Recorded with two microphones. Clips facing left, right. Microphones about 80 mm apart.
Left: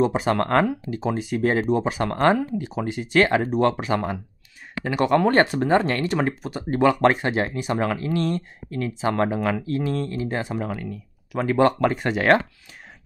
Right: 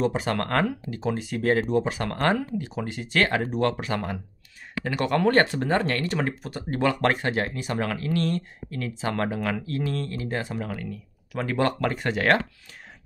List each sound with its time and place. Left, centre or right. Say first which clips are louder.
0.0 s speech: left 4 dB; centre